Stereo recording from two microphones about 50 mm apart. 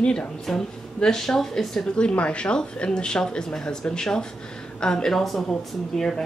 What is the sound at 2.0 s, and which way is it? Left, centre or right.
A woman's voice, left.